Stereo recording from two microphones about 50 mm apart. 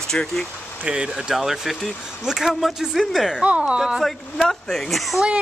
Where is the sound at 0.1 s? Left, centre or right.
Centre.